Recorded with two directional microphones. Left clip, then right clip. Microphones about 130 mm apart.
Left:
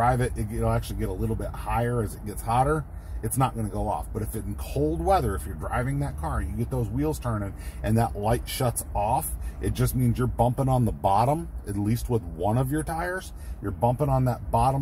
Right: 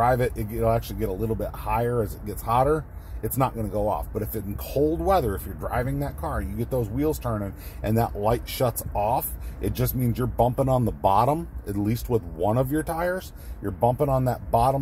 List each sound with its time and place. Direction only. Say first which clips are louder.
0.0 s a man's voice: right 2 dB; 15° right (ahead or behind)